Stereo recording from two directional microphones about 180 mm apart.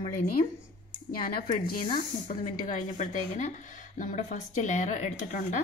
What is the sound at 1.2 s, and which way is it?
Speech, 50° left (ahead or behind).